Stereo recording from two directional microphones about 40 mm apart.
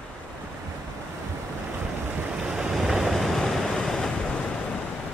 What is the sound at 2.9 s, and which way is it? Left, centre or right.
Vehicle, centre.